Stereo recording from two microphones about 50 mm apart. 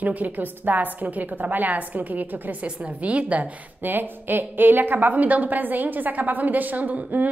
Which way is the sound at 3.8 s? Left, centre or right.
Right.